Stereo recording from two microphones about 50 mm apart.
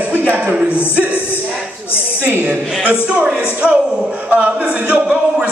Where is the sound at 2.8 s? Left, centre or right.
Right.